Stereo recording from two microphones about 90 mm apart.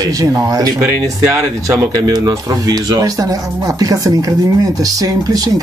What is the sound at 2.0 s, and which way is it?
Speech, 50° right (ahead or behind).